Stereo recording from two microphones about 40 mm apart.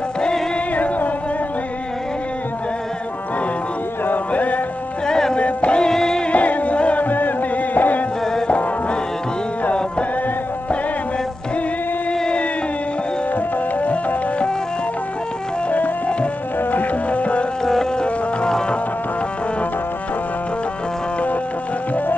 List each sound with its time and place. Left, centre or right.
0.7 s music: left
4.3 s music: left
5.0 s music: centre
5.4 s music: left
5.8 s music: centre
6.3 s music: left
7.1 s music: left
12.1 s a sound: left
13.3 s music: left
16.7 s music: left
17.6 s a sound: centre